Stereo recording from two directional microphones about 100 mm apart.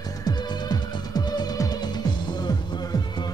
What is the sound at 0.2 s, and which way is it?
Music, 45° left (ahead or behind).